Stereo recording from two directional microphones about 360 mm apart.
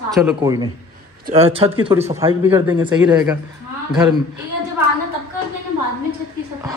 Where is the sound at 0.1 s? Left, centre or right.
Centre.